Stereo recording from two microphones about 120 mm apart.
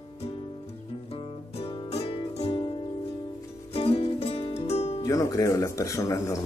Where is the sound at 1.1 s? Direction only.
55° left (ahead or behind).